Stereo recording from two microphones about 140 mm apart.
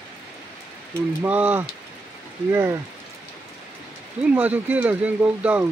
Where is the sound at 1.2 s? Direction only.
10° right (ahead or behind).